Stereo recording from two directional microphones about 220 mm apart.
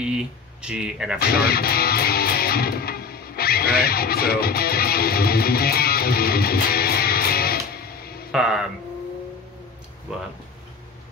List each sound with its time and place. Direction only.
0.0 s speech: 5° right (ahead or behind)
1.2 s music: 45° left (ahead or behind)
8.3 s speech: 5° right (ahead or behind)